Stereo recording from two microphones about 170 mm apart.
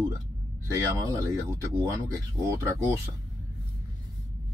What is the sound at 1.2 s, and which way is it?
Speech, 15° right (ahead or behind).